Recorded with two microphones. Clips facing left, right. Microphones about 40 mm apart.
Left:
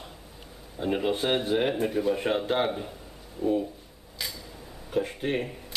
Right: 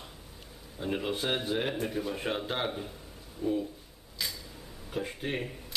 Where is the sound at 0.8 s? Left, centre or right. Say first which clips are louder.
Left 5 dB; centre.